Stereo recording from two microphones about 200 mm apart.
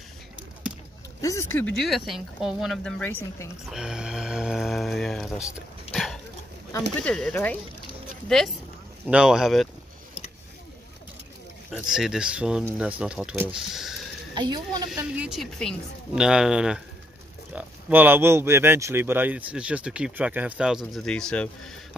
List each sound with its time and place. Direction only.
1.2 s speech: 15° left (ahead or behind)
3.7 s speech: 5° right (ahead or behind)
5.9 s a sound: 30° left (ahead or behind)
7.0 s speech: 5° left (ahead or behind)
9.0 s speech: 5° right (ahead or behind)
11.7 s speech: centre (ahead or behind)
14.3 s speech: 20° right (ahead or behind)
14.9 s speech: 5° right (ahead or behind)